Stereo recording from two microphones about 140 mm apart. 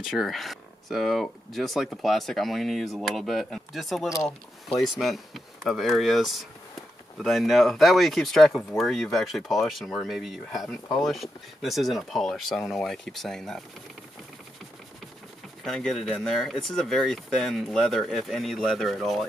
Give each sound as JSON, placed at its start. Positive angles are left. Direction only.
{"t": 0.0, "sound": "speech", "side_deg": 0}
{"t": 4.1, "sound": "speech", "side_deg": 20}
{"t": 4.7, "sound": "speech", "side_deg": 0}
{"t": 15.6, "sound": "speech", "side_deg": 5}